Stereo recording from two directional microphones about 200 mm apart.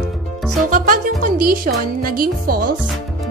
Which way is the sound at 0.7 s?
45° right (ahead or behind).